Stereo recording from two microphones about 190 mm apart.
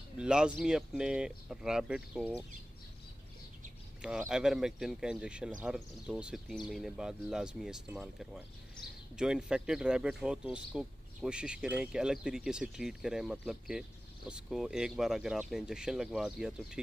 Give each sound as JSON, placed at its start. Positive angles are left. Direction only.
{"t": 0.2, "sound": "speech", "side_deg": -5}
{"t": 4.0, "sound": "speech", "side_deg": -5}